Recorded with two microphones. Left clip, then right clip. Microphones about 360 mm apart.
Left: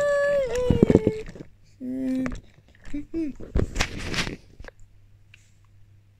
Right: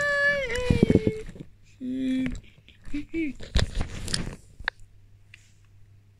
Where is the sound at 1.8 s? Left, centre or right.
Left.